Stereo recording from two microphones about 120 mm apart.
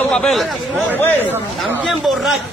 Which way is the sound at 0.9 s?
15° left (ahead or behind).